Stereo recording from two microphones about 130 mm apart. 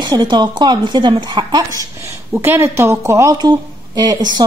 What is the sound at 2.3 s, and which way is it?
A woman's voice, 15° right (ahead or behind).